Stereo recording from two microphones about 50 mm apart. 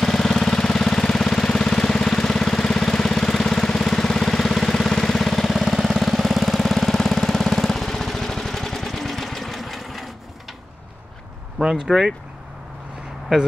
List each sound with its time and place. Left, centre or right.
0.0 s engine: centre
11.7 s speech: centre